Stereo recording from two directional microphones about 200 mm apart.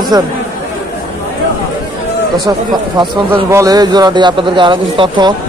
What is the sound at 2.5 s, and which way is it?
A man's voice, 20° right (ahead or behind).